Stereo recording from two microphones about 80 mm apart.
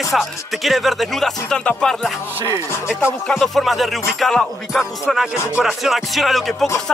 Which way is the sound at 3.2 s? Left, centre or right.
Centre.